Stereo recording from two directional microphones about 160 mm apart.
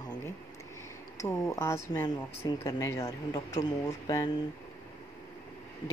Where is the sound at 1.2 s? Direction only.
20° left (ahead or behind).